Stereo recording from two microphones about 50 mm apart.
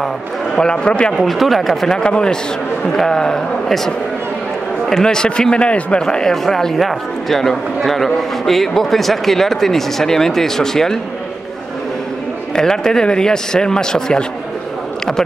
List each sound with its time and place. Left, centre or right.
0.6 s speech: centre
1.2 s speech: centre
5.0 s speech: centre
12.5 s speech: centre